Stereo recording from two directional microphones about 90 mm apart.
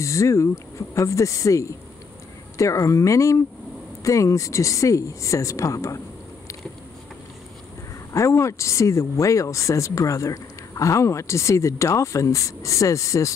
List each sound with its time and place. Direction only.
0.0 s speech: 35° left (ahead or behind)
8.1 s speech: 35° left (ahead or behind)